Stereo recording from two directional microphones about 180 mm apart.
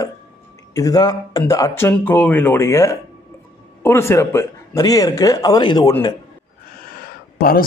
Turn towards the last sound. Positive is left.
turn(degrees=55)  # may be behind; listen again after turning